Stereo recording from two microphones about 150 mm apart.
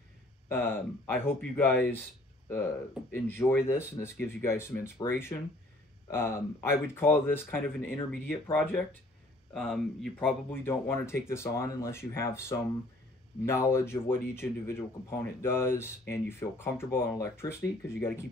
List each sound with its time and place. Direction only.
0.5 s speech: 15° left (ahead or behind)
3.3 s speech: 15° left (ahead or behind)
10.1 s speech: 15° left (ahead or behind)